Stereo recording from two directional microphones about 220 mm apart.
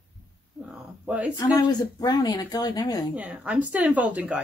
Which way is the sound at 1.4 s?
20° left (ahead or behind).